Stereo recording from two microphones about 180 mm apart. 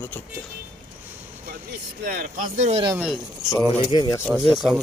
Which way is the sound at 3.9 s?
20° left (ahead or behind).